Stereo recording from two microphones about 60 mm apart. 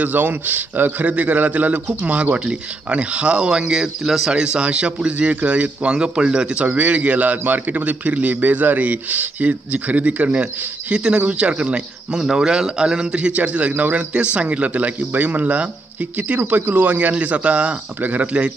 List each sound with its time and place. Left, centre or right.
0.0 s speech: right